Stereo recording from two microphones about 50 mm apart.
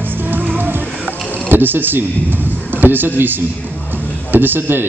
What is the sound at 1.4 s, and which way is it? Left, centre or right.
A man's voice, right.